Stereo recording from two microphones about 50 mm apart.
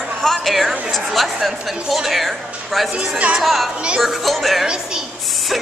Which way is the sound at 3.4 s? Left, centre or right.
Centre.